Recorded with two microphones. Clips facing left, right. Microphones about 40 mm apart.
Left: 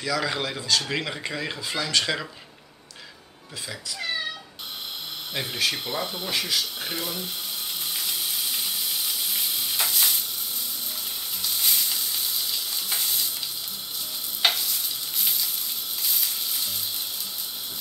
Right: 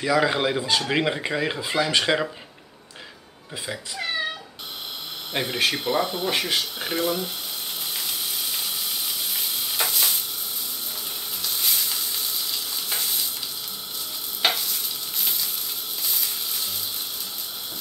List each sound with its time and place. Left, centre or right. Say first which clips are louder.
0.0 s speech: right 6 dB; right
3.6 s speech: right 3 dB; centre
5.3 s speech: right 4 dB; right
6.3 s speech: even; right
6.8 s speech: right 6 dB; centre
7.9 s sizzle: even; centre
11.4 s frying: even; centre
12.4 s stir: even; centre
14.4 s stir: even; centre
16.0 s a sound: even; centre